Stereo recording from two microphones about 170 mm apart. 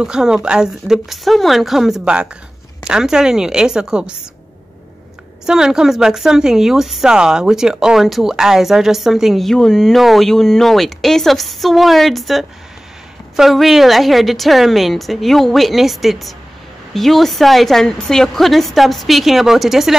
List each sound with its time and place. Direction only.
0.0 s a woman's voice: 5° right (ahead or behind)
5.5 s a woman's voice: 5° right (ahead or behind)